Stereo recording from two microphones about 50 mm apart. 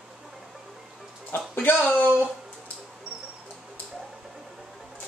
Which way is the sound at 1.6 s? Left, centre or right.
Left.